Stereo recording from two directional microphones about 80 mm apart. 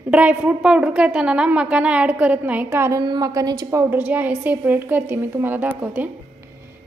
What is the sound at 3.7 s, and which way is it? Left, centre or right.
Speech, right.